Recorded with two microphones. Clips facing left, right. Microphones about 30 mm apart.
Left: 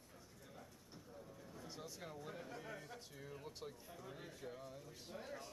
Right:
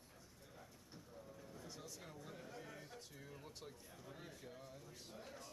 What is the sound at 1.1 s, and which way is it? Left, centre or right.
Vehicle, centre.